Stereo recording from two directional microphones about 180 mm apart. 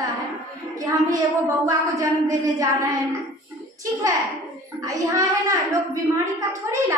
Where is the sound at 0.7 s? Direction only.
20° right (ahead or behind).